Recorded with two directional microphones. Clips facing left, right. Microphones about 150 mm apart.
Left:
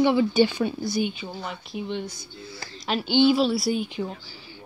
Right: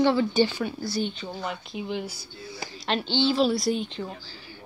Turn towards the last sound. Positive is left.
turn(degrees=10)  # may be behind; listen again after turning